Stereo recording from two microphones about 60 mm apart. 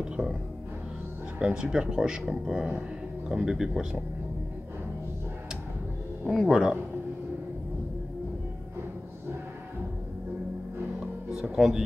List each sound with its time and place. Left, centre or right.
0.0 s music: centre
1.4 s speech: centre
6.2 s speech: centre
11.3 s speech: centre